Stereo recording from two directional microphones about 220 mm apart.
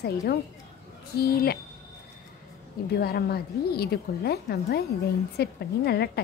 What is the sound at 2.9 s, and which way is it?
Speech, 45° left (ahead or behind).